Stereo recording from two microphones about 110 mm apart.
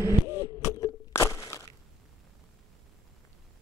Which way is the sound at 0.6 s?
30° left (ahead or behind).